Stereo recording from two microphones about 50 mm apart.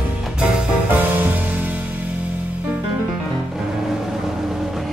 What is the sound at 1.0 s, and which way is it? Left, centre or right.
Music, right.